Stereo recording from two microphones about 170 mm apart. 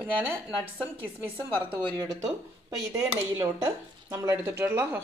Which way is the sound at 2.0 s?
20° right (ahead or behind).